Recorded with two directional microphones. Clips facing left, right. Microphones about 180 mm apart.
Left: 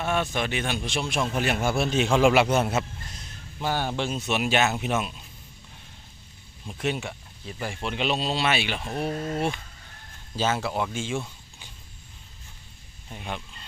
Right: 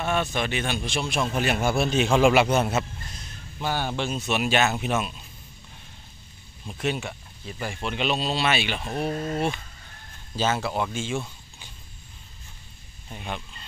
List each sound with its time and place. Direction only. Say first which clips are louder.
0.0 s speech: right 1 dB; 5° left (ahead or behind)
1.4 s a man's voice: right 2 dB; 10° right (ahead or behind)
2.2 s speech: even; centre (ahead or behind)
3.6 s speech: even; 35° left (ahead or behind)
4.3 s speech: right 1 dB; 20° left (ahead or behind)
6.8 s speech: right 1 dB; 20° left (ahead or behind)
8.5 s speech: right 1 dB; 5° left (ahead or behind)
13.1 s speech: right 1 dB; 5° left (ahead or behind)